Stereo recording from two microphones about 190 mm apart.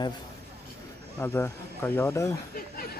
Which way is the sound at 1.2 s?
10° left (ahead or behind).